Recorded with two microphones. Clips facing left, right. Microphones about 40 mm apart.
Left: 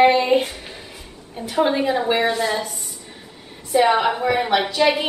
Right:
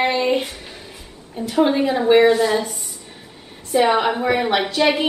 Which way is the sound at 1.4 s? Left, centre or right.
Centre.